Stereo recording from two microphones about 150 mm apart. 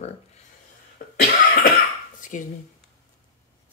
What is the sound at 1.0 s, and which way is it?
Cough, 70° left (ahead or behind).